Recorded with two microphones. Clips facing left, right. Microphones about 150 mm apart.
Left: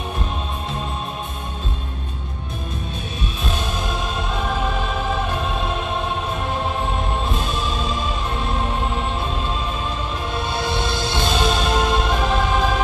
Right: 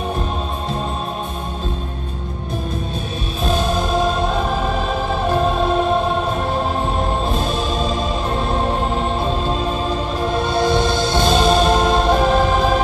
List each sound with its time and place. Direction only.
7.2 s music: 35° right (ahead or behind)
10.2 s music: 40° right (ahead or behind)